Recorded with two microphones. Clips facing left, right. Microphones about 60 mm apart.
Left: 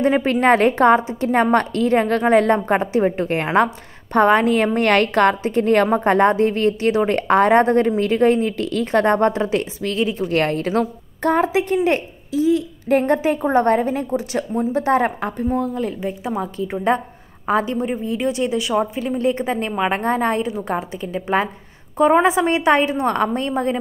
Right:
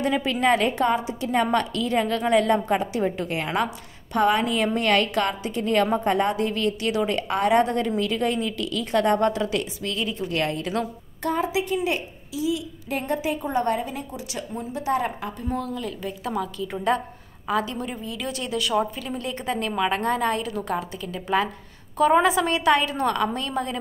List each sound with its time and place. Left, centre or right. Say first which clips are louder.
0.0 s a woman's voice: left 6 dB; left
10.2 s a woman's voice: left 5 dB; left
15.5 s a woman's voice: left 7 dB; left